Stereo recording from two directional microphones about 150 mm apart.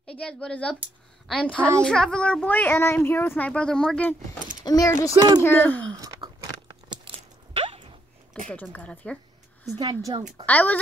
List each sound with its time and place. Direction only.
0.2 s a woman's voice: 5° left (ahead or behind)
4.6 s speech: 25° left (ahead or behind)
5.1 s a woman's voice: 25° right (ahead or behind)
5.4 s a woman's voice: 15° left (ahead or behind)
5.9 s a sound: 25° right (ahead or behind)
6.9 s biting: 35° right (ahead or behind)
8.5 s a woman's voice: 10° left (ahead or behind)
9.8 s a woman's voice: 25° right (ahead or behind)
10.4 s a woman's voice: 10° left (ahead or behind)